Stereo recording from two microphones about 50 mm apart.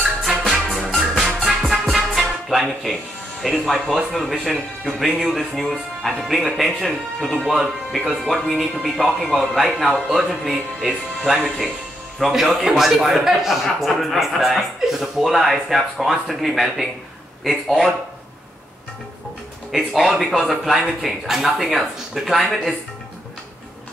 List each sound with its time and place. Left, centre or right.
0.5 s music: centre
3.4 s speech: centre
12.2 s speech: centre
19.7 s speech: centre